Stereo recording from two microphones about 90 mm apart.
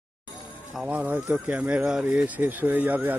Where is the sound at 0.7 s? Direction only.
10° right (ahead or behind).